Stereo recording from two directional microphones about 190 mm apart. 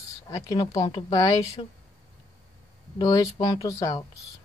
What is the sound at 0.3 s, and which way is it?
A woman's voice, 25° left (ahead or behind).